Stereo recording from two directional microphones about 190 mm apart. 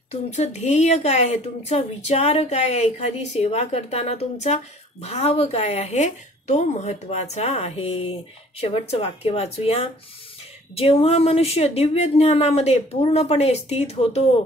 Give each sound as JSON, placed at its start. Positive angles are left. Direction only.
{"t": 0.1, "sound": "a woman's voice", "side_deg": 35}